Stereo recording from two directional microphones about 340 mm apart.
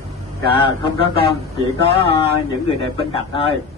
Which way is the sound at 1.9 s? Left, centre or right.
Centre.